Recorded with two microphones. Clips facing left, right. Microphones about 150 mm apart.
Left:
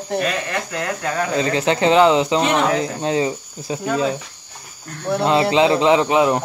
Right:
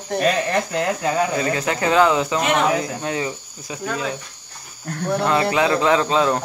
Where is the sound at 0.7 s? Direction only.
20° right (ahead or behind).